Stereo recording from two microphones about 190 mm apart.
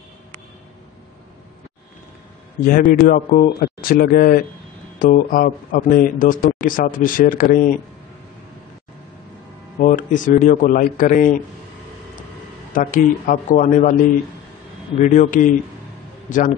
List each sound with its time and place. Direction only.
2.9 s speech: 50° left (ahead or behind)
9.8 s speech: 40° left (ahead or behind)
12.7 s speech: 45° left (ahead or behind)
15.0 s a man's voice: 40° left (ahead or behind)